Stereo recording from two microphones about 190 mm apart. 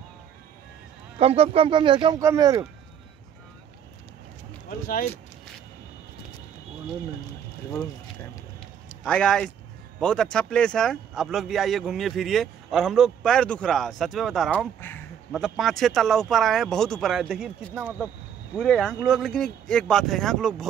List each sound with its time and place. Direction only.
1.2 s speech: 30° right (ahead or behind)
4.6 s speech: 45° left (ahead or behind)
8.8 s a man's voice: 5° left (ahead or behind)
14.8 s a sound: 10° left (ahead or behind)
15.3 s speech: centre (ahead or behind)